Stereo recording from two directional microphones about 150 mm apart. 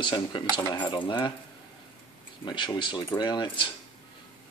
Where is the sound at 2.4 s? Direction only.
30° left (ahead or behind).